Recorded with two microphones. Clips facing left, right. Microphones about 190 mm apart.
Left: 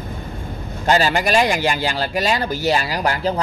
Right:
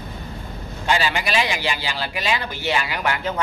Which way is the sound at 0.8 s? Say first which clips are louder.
Left 5 dB; 40° left (ahead or behind).